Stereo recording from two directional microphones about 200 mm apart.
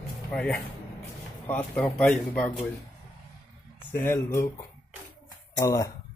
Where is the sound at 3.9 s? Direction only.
10° left (ahead or behind).